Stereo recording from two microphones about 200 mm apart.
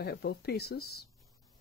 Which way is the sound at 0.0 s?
55° left (ahead or behind).